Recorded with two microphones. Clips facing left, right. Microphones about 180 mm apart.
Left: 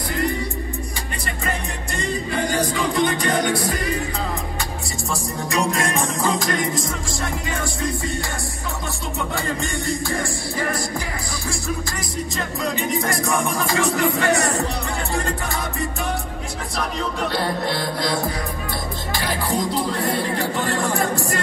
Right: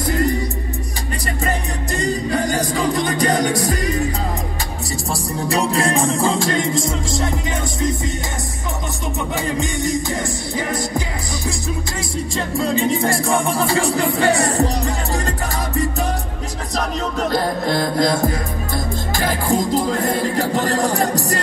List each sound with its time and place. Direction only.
2.0 s music: 40° right (ahead or behind)
5.1 s music: 35° right (ahead or behind)
9.3 s music: 20° right (ahead or behind)
12.4 s music: 30° right (ahead or behind)
17.3 s music: 45° right (ahead or behind)